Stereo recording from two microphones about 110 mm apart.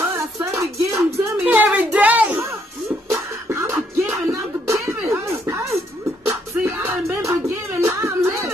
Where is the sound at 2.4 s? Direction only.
30° right (ahead or behind).